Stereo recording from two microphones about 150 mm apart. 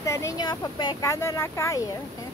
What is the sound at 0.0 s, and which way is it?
Speech, 20° left (ahead or behind).